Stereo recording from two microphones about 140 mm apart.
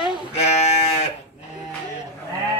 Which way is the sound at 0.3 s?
50° left (ahead or behind).